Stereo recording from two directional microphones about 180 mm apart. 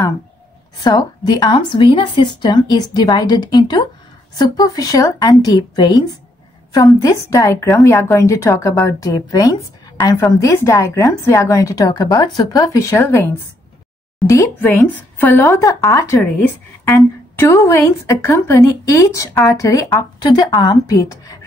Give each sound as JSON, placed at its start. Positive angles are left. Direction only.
{"t": 0.7, "sound": "a woman's voice", "side_deg": 20}